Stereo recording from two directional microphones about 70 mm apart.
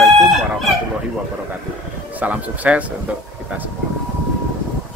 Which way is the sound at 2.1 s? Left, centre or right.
Right.